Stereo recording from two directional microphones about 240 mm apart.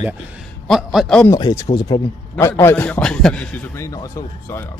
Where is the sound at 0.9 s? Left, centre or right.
Centre.